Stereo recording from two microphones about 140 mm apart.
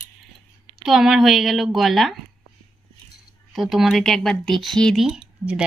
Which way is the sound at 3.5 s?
5° right (ahead or behind).